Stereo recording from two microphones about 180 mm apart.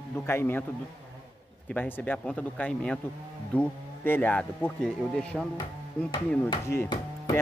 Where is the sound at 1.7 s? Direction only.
10° left (ahead or behind).